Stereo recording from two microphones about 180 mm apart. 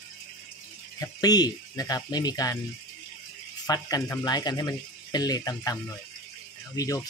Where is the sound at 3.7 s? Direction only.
20° left (ahead or behind).